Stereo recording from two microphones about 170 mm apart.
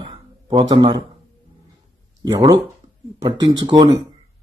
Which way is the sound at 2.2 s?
25° right (ahead or behind).